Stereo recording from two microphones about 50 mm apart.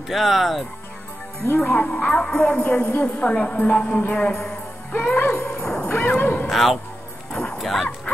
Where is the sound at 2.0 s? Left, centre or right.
Centre.